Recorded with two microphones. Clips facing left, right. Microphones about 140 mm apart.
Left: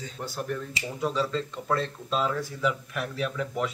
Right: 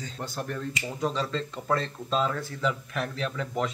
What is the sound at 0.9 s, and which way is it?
Dishes, 5° left (ahead or behind).